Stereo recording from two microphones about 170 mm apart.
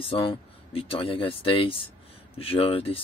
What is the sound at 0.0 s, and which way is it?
Speech, 35° left (ahead or behind).